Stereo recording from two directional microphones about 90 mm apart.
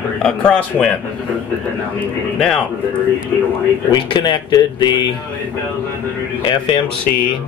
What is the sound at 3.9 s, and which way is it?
Speech, 60° left (ahead or behind).